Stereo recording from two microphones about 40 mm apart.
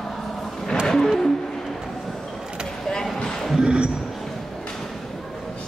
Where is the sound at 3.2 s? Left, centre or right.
Centre.